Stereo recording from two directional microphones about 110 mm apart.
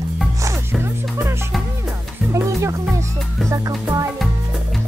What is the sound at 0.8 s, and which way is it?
Music, 20° right (ahead or behind).